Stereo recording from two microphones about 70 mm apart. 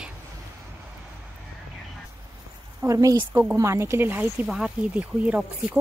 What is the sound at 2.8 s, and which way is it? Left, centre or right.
Speech, right.